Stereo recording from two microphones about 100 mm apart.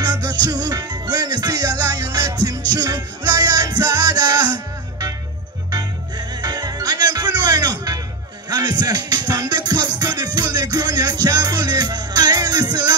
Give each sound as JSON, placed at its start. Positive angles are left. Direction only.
{"t": 0.0, "sound": "music", "side_deg": -45}
{"t": 5.7, "sound": "music", "side_deg": -40}